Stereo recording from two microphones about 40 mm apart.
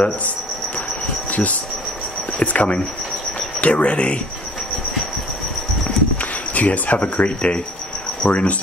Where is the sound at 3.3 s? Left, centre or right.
Left.